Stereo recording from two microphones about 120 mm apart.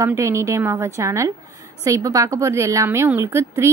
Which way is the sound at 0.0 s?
25° right (ahead or behind).